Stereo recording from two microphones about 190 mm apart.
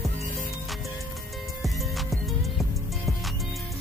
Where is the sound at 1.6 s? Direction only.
Centre (ahead or behind).